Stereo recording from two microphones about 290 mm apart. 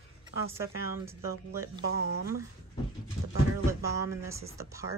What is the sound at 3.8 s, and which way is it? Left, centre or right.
A woman's voice, centre.